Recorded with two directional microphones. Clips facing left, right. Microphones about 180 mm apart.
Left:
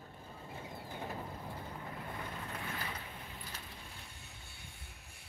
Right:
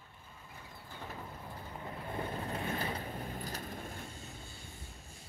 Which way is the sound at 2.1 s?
30° right (ahead or behind).